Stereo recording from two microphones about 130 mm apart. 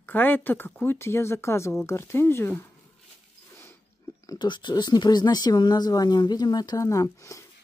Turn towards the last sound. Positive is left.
turn(degrees=25)  # may be behind; listen again after turning